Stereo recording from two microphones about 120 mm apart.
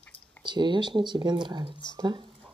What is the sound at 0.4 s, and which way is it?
Speech, 40° right (ahead or behind).